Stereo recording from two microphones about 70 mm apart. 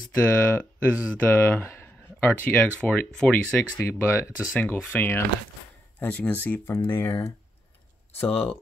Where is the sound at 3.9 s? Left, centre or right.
Left.